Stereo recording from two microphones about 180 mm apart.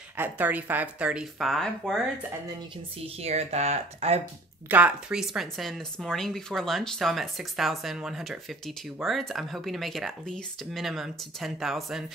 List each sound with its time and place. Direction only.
0.2 s speech: 10° right (ahead or behind)
3.2 s speech: 35° right (ahead or behind)
4.6 s speech: 10° right (ahead or behind)